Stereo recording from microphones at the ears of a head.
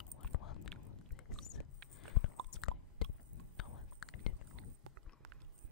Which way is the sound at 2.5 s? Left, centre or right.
Left.